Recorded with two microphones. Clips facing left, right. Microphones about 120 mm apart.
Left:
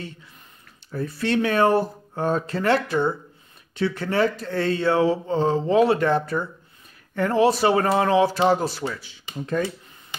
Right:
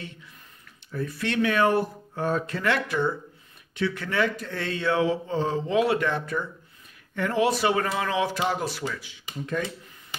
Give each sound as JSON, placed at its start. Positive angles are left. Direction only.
{"t": 0.9, "sound": "speech", "side_deg": 30}